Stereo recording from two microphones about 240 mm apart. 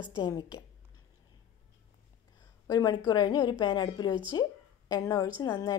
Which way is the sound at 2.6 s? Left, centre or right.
Centre.